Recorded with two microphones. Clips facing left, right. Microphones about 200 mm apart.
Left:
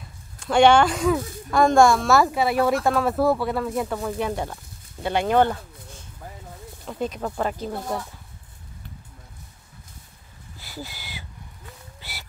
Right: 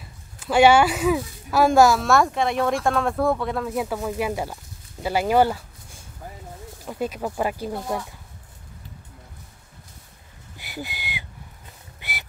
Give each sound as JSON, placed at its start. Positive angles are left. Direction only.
{"t": 0.4, "sound": "speech", "side_deg": -5}
{"t": 10.6, "sound": "a sound", "side_deg": -15}
{"t": 12.0, "sound": "whistling", "side_deg": -20}